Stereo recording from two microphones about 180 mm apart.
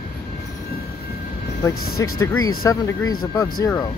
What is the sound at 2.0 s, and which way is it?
Speech, 15° left (ahead or behind).